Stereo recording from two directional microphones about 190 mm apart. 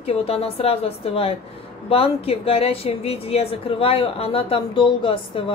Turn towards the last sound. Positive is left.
turn(degrees=25)  # may be behind; listen again after turning